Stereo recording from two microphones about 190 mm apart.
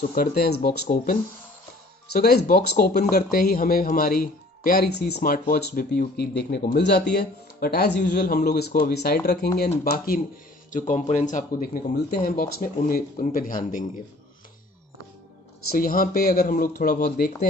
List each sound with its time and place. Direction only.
0.0 s speech: 50° left (ahead or behind)
2.1 s speech: 50° left (ahead or behind)
10.7 s speech: 40° left (ahead or behind)
15.7 s speech: 50° left (ahead or behind)